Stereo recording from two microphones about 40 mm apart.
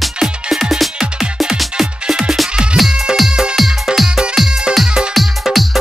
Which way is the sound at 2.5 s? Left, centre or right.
Right.